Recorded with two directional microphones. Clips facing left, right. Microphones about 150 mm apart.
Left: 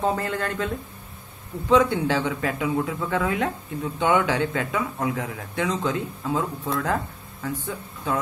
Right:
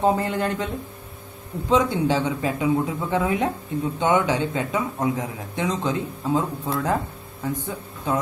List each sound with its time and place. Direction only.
0.0 s speech: 20° right (ahead or behind)
1.7 s speech: 15° right (ahead or behind)